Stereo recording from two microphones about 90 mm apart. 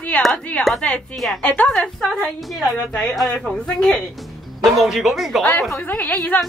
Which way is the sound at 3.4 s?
5° left (ahead or behind).